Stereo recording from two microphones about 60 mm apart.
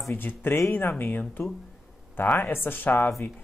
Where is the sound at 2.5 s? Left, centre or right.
Left.